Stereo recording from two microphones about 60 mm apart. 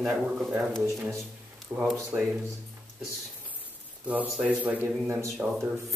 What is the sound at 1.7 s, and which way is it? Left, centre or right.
Speech, right.